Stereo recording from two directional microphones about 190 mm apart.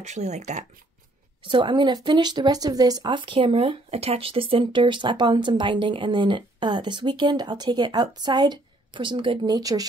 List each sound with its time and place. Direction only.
0.0 s speech: 35° right (ahead or behind)
1.4 s speech: 25° right (ahead or behind)